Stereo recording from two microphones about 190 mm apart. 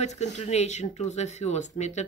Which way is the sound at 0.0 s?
35° left (ahead or behind).